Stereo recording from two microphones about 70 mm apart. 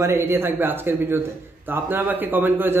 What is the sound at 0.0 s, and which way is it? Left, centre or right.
A man's voice, right.